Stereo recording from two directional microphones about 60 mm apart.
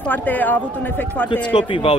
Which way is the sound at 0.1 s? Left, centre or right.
Left.